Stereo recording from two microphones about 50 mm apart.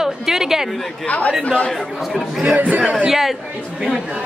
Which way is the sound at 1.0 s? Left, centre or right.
Left.